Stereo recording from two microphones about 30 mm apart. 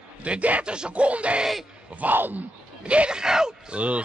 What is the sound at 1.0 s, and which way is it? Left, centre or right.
Speech, right.